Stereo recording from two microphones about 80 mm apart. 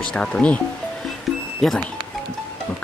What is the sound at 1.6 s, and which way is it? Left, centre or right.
Speech, centre.